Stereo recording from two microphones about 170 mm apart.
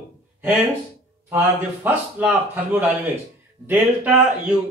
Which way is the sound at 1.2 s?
15° right (ahead or behind).